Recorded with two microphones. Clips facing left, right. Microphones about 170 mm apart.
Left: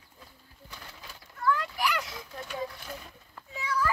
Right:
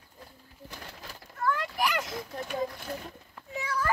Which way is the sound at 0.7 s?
50° right (ahead or behind).